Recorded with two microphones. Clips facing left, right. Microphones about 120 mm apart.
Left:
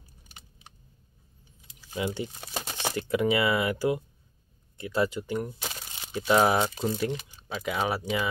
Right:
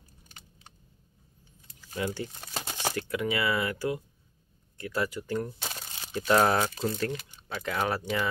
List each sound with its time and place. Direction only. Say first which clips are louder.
1.9 s speech: left 2 dB; 20° left (ahead or behind)
5.6 s a sound: left 1 dB; 5° left (ahead or behind)
7.5 s speech: left 1 dB; 10° left (ahead or behind)